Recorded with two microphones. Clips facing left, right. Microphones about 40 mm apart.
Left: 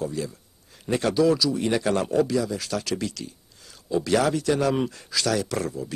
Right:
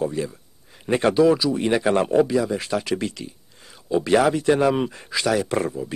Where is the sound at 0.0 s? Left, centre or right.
Right.